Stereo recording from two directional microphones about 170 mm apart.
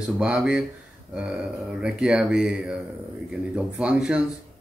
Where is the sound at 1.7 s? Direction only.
5° right (ahead or behind).